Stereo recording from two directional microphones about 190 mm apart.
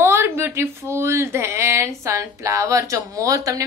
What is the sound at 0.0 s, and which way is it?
Speech, 15° right (ahead or behind).